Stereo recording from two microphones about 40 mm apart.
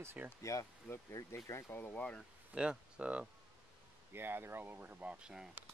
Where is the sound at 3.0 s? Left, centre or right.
Right.